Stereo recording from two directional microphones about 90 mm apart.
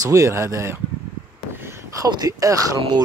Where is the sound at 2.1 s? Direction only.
45° right (ahead or behind).